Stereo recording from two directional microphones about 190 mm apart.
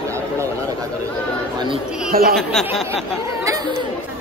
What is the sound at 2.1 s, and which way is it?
Speech, 50° right (ahead or behind).